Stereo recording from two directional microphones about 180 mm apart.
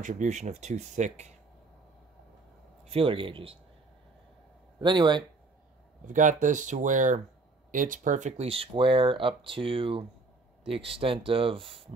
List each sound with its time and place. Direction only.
0.0 s speech: 40° right (ahead or behind)
2.9 s speech: 30° right (ahead or behind)
4.7 s speech: 25° right (ahead or behind)
6.0 s speech: 45° right (ahead or behind)